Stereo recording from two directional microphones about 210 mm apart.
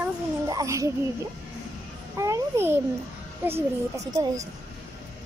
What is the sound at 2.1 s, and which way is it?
Speech, 15° right (ahead or behind).